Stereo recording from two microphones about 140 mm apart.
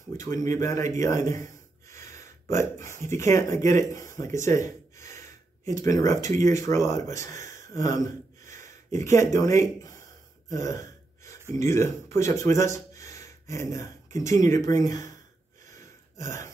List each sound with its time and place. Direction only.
0.2 s speech: 25° left (ahead or behind)
0.9 s a sound: 20° left (ahead or behind)
2.5 s speech: 20° left (ahead or behind)
15.8 s gasp: 20° left (ahead or behind)